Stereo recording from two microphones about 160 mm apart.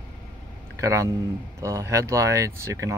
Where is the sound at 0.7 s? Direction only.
20° right (ahead or behind).